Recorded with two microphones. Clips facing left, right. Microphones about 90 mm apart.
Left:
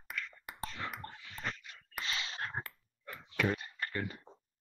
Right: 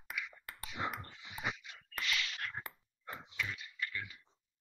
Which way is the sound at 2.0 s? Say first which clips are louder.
Even; 30° left (ahead or behind).